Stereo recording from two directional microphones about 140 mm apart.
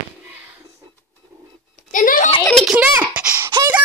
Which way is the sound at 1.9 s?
70° left (ahead or behind).